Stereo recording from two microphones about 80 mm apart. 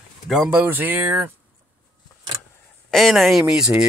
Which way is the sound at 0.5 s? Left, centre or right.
Right.